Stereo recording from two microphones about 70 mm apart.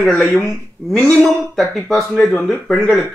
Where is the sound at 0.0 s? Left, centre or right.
Centre.